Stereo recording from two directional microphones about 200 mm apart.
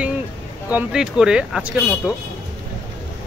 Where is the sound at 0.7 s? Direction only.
5° right (ahead or behind).